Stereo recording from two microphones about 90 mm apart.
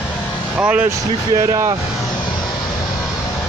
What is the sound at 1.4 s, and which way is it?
Speech, 35° right (ahead or behind).